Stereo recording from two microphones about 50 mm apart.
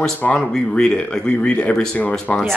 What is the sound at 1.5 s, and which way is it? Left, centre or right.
Speech, left.